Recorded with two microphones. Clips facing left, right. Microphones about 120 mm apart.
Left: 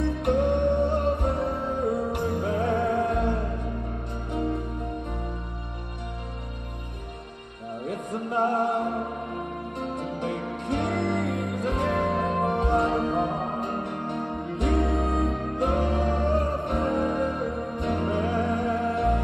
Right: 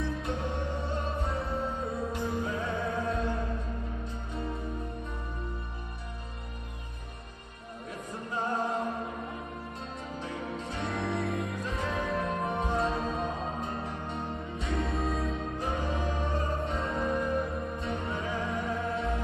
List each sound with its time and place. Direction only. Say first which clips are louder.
0.0 s music: left 10 dB; 65° left (ahead or behind)
7.8 s music: left 8 dB; 65° left (ahead or behind)